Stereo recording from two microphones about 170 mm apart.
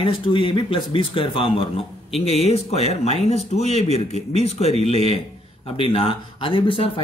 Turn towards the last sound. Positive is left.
turn(degrees=30)  # may be behind; listen again after turning